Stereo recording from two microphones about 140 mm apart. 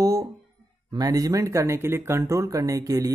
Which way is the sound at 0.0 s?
25° right (ahead or behind).